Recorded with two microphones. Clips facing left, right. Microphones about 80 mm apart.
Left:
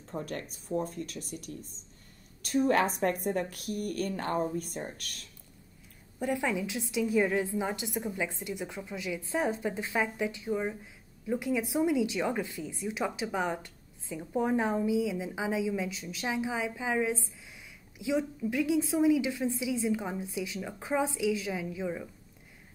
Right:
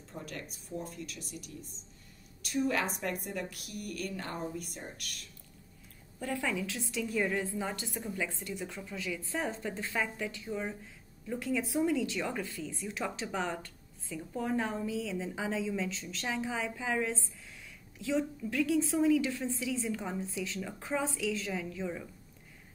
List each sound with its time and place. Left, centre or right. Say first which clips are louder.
0.1 s a woman's voice: left 6 dB; left
6.1 s a woman's voice: left 4 dB; centre